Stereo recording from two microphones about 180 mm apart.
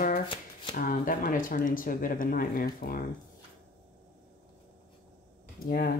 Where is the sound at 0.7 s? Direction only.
50° left (ahead or behind).